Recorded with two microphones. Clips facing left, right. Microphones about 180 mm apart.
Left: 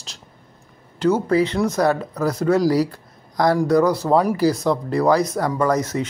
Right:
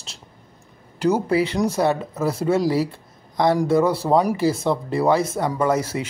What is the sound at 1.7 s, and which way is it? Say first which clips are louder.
Speech: left 1 dB; 25° right (ahead or behind).